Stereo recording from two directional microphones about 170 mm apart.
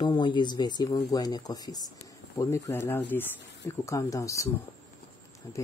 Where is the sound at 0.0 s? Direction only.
25° left (ahead or behind).